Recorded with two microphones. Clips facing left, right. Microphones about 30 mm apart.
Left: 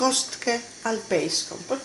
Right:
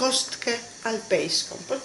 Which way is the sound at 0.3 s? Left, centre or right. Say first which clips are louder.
Left 2 dB; right.